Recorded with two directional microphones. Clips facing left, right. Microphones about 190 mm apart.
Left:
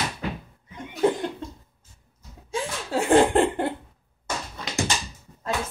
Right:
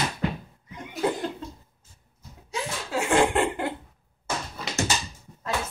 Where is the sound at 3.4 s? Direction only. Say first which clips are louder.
Left 3 dB; 30° left (ahead or behind).